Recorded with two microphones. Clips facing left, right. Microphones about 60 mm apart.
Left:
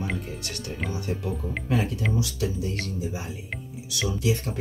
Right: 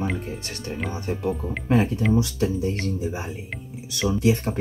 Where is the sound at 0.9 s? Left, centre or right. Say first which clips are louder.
Right 5 dB; right.